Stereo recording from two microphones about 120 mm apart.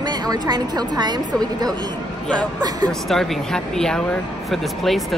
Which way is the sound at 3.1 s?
Centre (ahead or behind).